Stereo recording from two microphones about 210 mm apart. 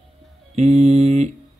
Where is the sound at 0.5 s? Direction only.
30° right (ahead or behind).